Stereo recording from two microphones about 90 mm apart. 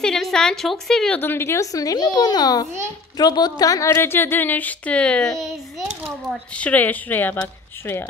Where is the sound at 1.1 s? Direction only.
25° left (ahead or behind); by 5.9 s 5° right (ahead or behind).